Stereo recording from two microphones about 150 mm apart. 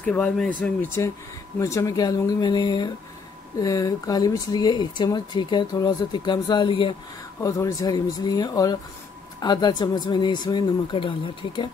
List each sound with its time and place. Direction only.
0.0 s speech: 10° left (ahead or behind); by 7.0 s 35° left (ahead or behind)
7.3 s speech: 20° left (ahead or behind)